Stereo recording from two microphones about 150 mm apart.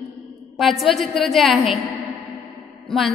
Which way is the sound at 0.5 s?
Centre (ahead or behind).